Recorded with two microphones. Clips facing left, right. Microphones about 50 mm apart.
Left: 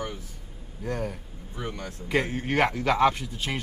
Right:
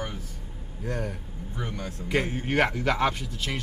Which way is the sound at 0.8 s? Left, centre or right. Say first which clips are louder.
Left 1 dB; centre.